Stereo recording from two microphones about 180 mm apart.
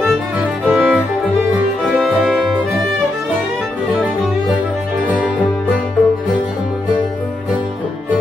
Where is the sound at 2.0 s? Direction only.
Centre (ahead or behind).